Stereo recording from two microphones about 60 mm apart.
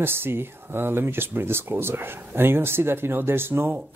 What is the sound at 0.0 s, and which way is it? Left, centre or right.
Speech, right.